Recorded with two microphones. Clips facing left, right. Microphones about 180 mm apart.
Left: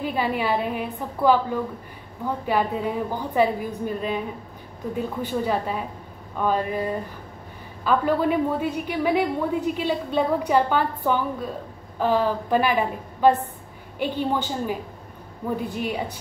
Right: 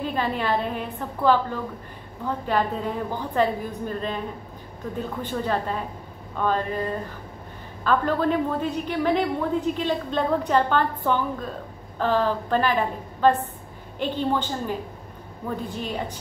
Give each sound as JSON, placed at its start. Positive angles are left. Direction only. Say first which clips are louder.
{"t": 0.0, "sound": "a woman's voice", "louder": "left 1 dB", "side_deg": 10}